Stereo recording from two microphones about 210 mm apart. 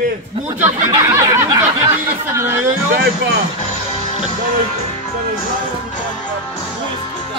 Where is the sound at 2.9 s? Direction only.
50° right (ahead or behind).